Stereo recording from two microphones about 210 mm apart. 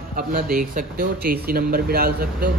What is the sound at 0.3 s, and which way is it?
Speech, 40° right (ahead or behind).